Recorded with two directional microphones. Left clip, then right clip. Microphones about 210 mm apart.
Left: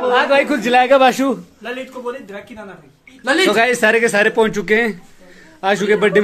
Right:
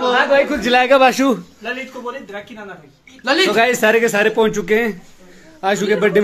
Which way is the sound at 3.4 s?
Centre (ahead or behind).